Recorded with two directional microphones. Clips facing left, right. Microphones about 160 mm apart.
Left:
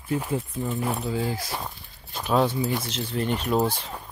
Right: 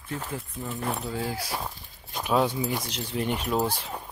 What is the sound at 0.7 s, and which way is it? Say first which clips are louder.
Speech: left 3 dB; 5° left (ahead or behind).